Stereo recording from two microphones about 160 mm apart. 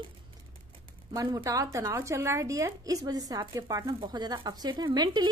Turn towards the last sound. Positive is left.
turn(degrees=-30)  # may be behind; listen again after turning